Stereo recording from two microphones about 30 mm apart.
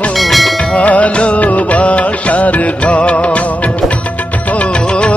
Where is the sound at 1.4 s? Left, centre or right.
Left.